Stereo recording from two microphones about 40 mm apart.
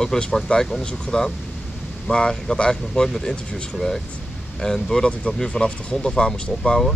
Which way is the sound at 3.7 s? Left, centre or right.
Centre.